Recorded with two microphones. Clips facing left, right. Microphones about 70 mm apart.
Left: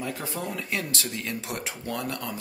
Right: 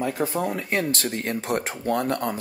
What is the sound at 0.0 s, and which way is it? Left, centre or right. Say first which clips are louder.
Speech: right 8 dB; right.